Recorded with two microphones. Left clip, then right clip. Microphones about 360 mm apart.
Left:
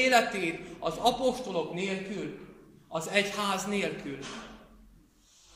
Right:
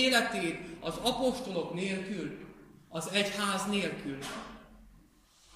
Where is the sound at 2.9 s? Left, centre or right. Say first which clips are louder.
Left 3 dB; centre.